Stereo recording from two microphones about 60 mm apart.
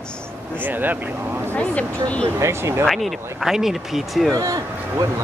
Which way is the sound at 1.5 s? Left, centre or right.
Left.